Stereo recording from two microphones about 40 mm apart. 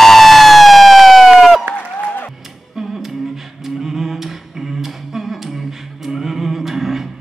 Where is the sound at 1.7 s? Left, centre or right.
Left.